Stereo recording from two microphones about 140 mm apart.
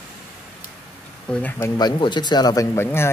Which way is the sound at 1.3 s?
10° left (ahead or behind).